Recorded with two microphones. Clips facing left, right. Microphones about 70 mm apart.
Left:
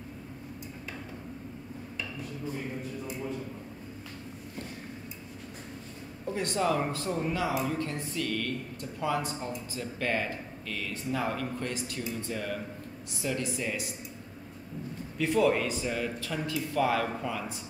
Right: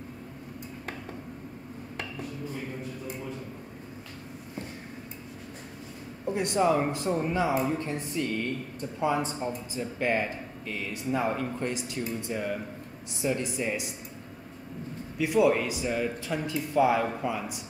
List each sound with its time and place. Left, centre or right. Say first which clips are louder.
6.2 s speech: right 4 dB; centre
15.1 s speech: right 2 dB; centre